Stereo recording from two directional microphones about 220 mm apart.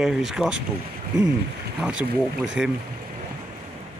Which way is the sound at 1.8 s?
5° right (ahead or behind).